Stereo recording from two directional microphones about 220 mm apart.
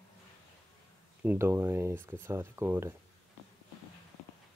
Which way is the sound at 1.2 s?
10° right (ahead or behind).